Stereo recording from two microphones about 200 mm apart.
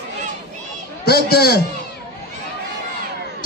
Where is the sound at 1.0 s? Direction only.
50° left (ahead or behind).